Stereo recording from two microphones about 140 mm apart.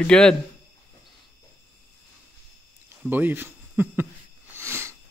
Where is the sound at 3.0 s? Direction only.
15° right (ahead or behind).